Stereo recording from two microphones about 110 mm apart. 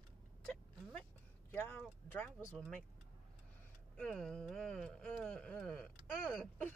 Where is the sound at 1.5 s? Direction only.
20° left (ahead or behind).